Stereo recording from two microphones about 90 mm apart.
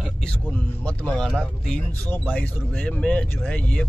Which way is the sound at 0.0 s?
10° left (ahead or behind).